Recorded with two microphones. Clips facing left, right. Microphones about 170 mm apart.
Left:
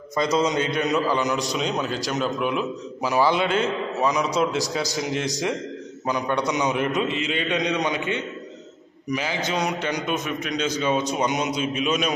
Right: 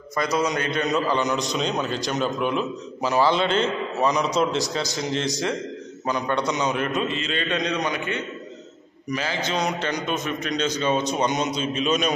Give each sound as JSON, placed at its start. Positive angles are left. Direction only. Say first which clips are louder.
{"t": 0.1, "sound": "a man's voice", "louder": "left 2 dB", "side_deg": 20}